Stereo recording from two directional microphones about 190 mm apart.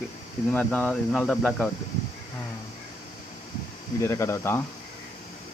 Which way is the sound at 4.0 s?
15° left (ahead or behind).